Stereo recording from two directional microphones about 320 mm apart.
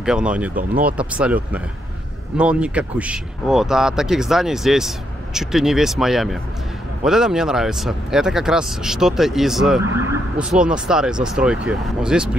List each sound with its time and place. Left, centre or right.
0.0 s speech: centre
0.6 s speech: right
0.9 s speech: centre